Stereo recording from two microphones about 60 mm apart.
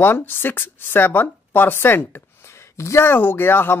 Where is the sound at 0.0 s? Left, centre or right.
Left.